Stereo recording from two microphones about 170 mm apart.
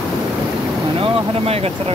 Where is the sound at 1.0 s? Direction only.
35° right (ahead or behind).